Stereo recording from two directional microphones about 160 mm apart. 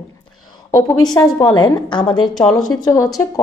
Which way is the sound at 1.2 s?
25° left (ahead or behind).